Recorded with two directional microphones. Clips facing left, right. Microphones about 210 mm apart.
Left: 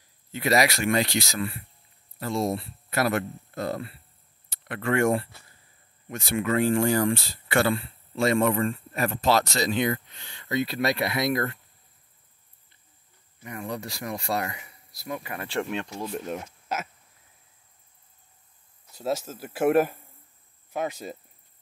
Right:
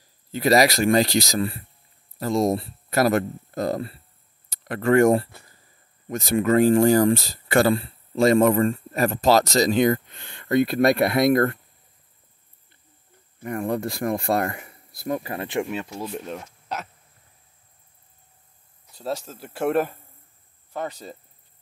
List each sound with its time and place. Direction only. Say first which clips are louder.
0.3 s speech: right 5 dB; 35° right (ahead or behind); by 11.6 s 50° right (ahead or behind)
13.4 s speech: right 8 dB; 55° right (ahead or behind)
15.1 s speech: right 4 dB; 35° right (ahead or behind)
15.4 s speech: even; 15° right (ahead or behind)
15.7 s speech: right 1 dB; 5° right (ahead or behind)
16.3 s speech: left 1 dB; 5° left (ahead or behind)
18.9 s speech: left 1 dB; 5° left (ahead or behind)